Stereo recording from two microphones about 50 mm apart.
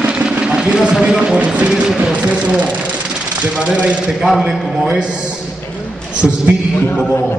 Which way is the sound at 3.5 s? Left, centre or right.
Centre.